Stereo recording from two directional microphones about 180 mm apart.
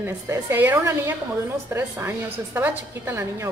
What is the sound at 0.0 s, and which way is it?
A woman's voice, 10° right (ahead or behind).